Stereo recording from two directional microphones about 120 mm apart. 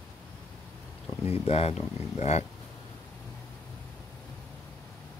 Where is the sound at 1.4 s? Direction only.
60° left (ahead or behind).